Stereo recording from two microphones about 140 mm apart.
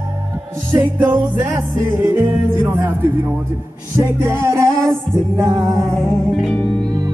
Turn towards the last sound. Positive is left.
turn(degrees=5)  # may be behind; listen again after turning